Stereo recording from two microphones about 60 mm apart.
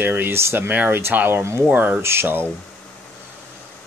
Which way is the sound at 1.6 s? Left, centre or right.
Right.